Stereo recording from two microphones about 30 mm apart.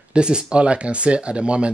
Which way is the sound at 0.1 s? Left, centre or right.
Right.